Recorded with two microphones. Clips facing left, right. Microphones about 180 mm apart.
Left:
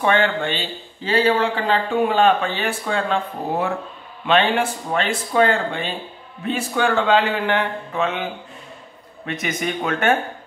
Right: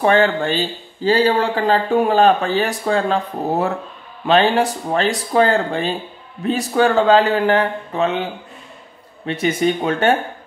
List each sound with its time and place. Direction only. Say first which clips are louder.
0.0 s speech: right 4 dB; 35° right (ahead or behind)